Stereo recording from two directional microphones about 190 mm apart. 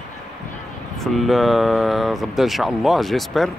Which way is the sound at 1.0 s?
Centre (ahead or behind).